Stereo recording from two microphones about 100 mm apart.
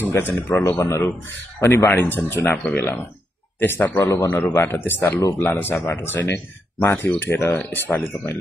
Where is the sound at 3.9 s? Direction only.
35° left (ahead or behind).